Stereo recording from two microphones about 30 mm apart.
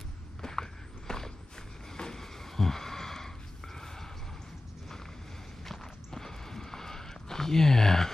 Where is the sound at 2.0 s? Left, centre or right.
Left.